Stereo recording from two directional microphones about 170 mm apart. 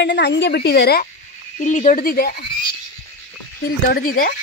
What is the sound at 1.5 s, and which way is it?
Speech, 45° left (ahead or behind).